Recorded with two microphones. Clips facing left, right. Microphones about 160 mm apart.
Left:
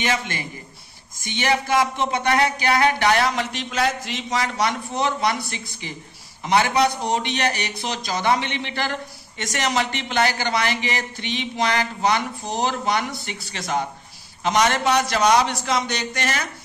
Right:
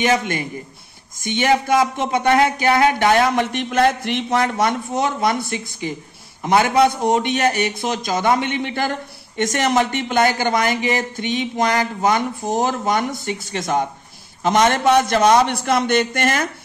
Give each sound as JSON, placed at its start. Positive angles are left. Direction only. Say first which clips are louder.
{"t": 1.2, "sound": "speech", "louder": "right 5 dB", "side_deg": -50}